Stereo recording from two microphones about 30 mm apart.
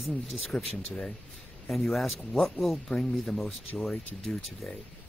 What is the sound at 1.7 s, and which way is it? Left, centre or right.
Speech, centre.